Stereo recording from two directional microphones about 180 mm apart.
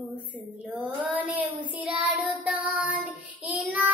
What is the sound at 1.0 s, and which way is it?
Child singing, 5° right (ahead or behind).